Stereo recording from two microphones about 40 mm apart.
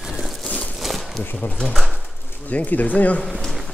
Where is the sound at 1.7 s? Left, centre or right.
Centre.